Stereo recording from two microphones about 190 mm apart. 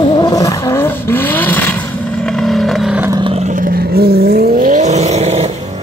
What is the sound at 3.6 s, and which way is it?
Vehicle, 55° right (ahead or behind).